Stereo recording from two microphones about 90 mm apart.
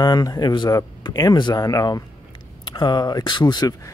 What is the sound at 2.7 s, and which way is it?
Speech, 50° left (ahead or behind).